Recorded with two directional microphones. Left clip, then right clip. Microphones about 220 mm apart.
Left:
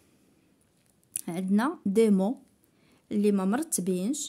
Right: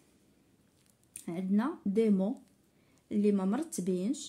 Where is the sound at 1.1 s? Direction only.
45° left (ahead or behind).